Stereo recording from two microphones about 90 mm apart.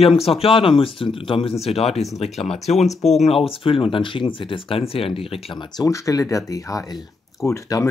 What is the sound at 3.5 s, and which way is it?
Speech, 85° left.